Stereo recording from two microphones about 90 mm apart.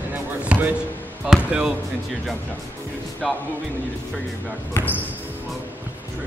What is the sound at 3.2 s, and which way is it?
Speech, centre (ahead or behind).